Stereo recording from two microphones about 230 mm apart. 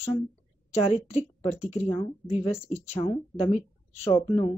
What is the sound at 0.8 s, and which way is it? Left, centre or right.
Speech, left.